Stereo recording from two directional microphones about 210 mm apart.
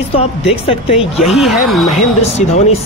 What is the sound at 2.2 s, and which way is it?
Speech, 30° left (ahead or behind).